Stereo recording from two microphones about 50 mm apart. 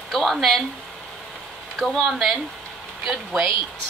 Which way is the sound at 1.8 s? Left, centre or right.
Centre.